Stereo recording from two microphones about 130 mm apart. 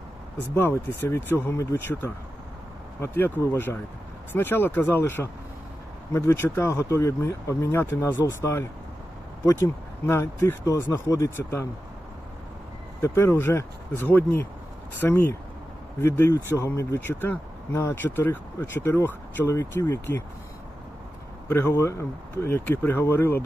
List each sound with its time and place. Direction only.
0.6 s speech: 20° left (ahead or behind)
13.0 s speech: 20° left (ahead or behind)
21.5 s speech: 20° left (ahead or behind)